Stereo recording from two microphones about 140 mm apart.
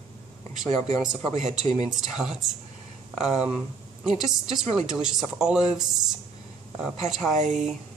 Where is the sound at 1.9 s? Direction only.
5° right (ahead or behind).